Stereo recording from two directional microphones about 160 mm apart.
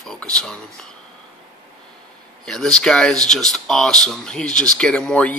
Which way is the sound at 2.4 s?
5° left (ahead or behind).